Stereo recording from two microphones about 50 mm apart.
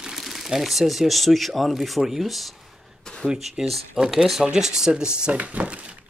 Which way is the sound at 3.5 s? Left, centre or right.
Centre.